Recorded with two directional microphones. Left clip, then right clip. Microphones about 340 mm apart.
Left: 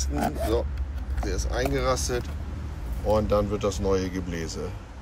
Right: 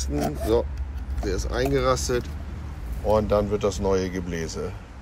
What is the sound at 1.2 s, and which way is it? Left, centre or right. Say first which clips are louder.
Speech: right 3 dB; centre.